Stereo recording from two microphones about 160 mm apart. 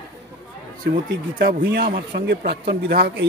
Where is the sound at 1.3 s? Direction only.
75° right (ahead or behind).